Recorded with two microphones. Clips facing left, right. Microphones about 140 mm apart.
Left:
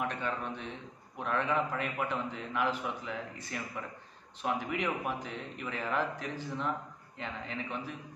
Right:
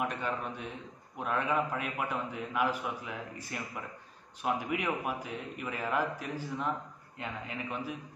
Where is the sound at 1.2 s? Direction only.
10° right (ahead or behind).